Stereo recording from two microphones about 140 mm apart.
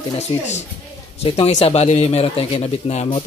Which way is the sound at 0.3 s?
35° left (ahead or behind).